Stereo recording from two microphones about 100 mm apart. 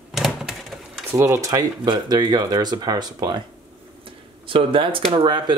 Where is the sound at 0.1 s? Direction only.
Centre (ahead or behind).